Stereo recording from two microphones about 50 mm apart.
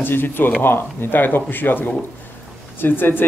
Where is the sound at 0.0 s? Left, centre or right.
Left.